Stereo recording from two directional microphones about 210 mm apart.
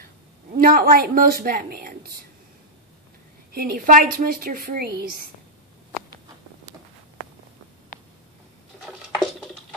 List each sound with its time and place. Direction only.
0.6 s a woman's voice: 45° right (ahead or behind)
3.5 s a woman's voice: 45° right (ahead or behind)
9.2 s a sound: centre (ahead or behind)